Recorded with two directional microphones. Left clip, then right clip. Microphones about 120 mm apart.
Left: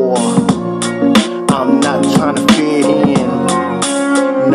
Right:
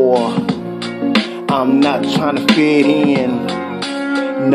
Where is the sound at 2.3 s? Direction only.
35° left (ahead or behind).